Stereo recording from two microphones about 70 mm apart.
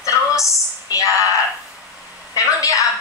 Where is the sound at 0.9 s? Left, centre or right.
Left.